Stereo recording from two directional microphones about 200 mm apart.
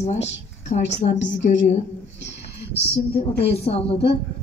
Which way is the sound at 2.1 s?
60° left (ahead or behind).